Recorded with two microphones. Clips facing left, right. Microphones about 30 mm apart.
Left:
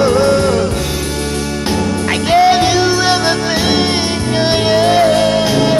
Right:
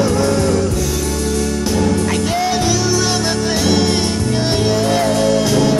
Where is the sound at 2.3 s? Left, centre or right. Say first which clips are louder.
Left 11 dB; left.